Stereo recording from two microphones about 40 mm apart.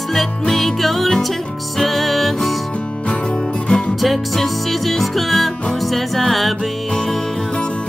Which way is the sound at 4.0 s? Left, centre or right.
Centre.